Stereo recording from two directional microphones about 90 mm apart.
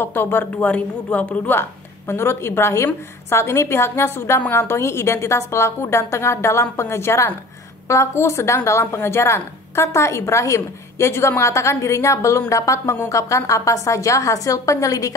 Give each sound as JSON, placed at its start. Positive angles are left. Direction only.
{"t": 0.0, "sound": "a woman's voice", "side_deg": 25}